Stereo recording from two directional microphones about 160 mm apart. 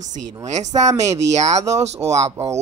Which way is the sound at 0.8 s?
20° right (ahead or behind).